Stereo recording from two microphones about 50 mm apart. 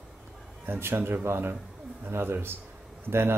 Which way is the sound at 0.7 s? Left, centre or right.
Right.